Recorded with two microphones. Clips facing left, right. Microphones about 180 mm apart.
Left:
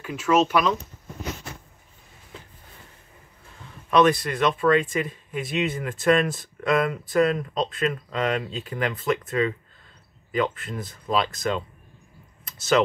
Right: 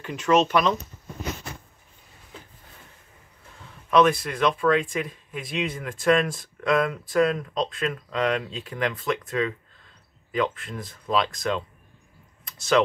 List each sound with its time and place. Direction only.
0.0 s speech: 5° left (ahead or behind)
3.9 s speech: centre (ahead or behind)
12.4 s a sound: 5° left (ahead or behind)